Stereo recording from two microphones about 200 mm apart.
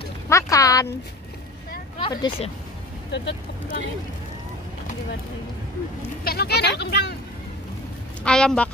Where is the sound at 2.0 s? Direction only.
25° left (ahead or behind).